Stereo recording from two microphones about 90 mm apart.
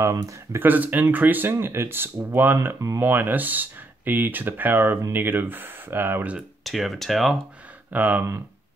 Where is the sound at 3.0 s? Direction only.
20° right (ahead or behind).